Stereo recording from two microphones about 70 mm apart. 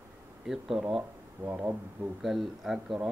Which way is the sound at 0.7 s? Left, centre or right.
Centre.